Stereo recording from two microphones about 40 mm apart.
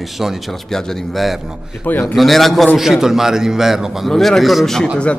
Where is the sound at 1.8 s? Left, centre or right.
Left.